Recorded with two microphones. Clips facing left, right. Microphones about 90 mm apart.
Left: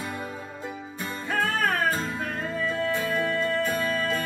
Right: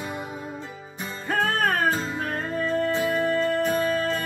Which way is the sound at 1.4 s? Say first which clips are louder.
Right 2 dB; 50° right (ahead or behind).